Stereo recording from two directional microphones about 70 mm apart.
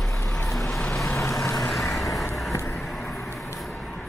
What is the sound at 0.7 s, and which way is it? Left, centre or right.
Vehicle, centre.